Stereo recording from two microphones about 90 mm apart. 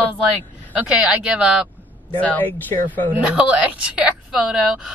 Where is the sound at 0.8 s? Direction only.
10° right (ahead or behind).